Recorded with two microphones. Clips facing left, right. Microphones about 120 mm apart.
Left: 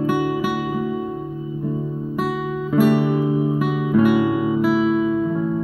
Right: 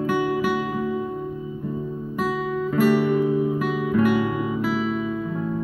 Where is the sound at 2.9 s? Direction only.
20° left (ahead or behind).